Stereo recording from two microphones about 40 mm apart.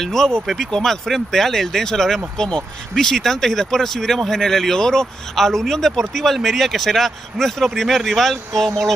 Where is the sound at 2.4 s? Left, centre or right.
Left.